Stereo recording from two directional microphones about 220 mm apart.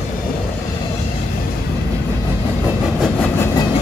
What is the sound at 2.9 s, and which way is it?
Train, 5° left (ahead or behind).